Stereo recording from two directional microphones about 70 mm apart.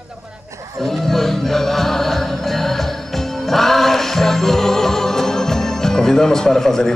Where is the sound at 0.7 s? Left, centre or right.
Centre.